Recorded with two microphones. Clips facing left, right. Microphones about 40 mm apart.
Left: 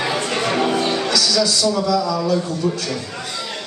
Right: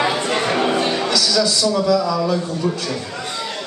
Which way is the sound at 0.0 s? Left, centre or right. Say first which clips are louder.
Right 2 dB; centre.